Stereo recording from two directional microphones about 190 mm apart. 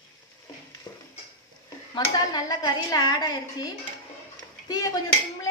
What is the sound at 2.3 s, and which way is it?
A woman's voice, 20° left (ahead or behind).